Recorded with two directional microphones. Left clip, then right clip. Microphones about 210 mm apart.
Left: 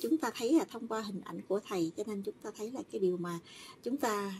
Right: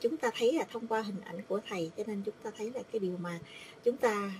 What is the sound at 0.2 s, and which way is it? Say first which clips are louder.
Speech: right 1 dB; 30° left (ahead or behind).